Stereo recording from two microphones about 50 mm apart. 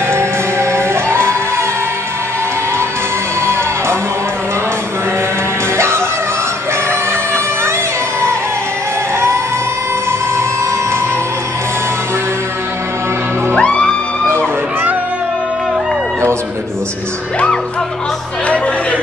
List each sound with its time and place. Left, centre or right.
0.1 s music: right
5.8 s music: right
13.6 s music: left